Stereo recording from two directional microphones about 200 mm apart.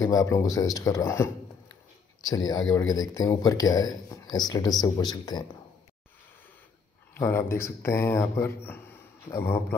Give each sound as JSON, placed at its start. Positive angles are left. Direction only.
{"t": 0.0, "sound": "a man's voice", "side_deg": 15}
{"t": 7.2, "sound": "a man's voice", "side_deg": 10}